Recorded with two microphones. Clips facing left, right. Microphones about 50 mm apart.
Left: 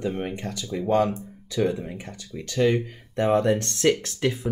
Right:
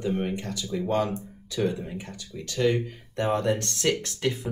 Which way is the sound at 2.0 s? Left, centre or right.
Left.